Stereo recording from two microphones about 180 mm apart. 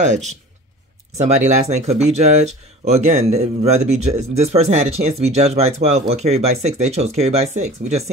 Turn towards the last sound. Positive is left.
turn(degrees=-35)  # may be behind; listen again after turning